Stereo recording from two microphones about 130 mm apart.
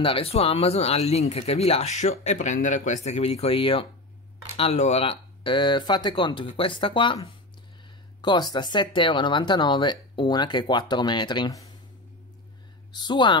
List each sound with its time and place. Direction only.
0.0 s speech: 45° left (ahead or behind)
8.2 s speech: 35° left (ahead or behind)
12.9 s speech: 35° left (ahead or behind)